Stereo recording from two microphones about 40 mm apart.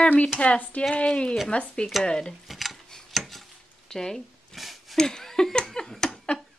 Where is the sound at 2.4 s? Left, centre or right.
Centre.